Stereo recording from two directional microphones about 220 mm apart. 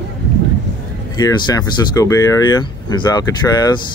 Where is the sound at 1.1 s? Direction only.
20° left (ahead or behind).